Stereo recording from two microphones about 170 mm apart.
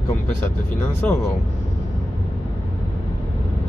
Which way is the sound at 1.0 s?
10° left (ahead or behind).